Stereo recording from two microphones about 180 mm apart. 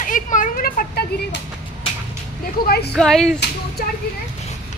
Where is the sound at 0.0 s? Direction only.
45° left (ahead or behind).